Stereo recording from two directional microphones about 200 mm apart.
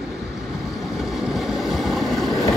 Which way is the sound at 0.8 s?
Centre (ahead or behind).